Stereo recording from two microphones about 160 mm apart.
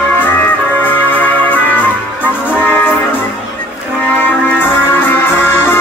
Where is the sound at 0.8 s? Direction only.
10° left (ahead or behind).